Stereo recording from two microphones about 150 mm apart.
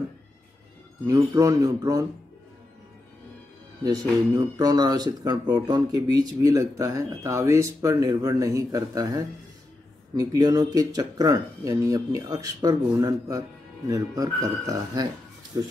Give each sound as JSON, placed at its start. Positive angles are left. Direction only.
{"t": 1.0, "sound": "speech", "side_deg": -25}
{"t": 4.4, "sound": "speech", "side_deg": -25}